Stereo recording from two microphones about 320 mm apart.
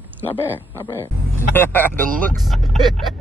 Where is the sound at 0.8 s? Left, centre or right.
Centre.